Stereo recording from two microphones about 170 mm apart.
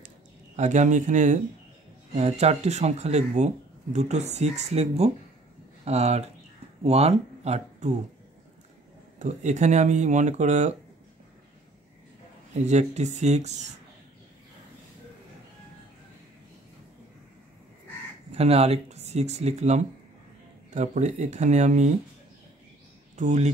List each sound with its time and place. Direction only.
0.6 s speech: 45° right (ahead or behind)
9.2 s speech: 45° right (ahead or behind)
12.6 s speech: 40° right (ahead or behind)
18.3 s speech: 40° right (ahead or behind)
23.1 s speech: 45° right (ahead or behind)